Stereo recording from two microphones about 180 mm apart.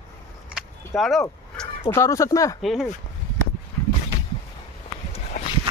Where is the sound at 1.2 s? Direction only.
15° left (ahead or behind).